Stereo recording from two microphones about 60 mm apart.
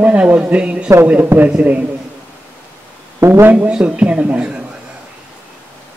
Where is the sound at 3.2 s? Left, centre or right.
Right.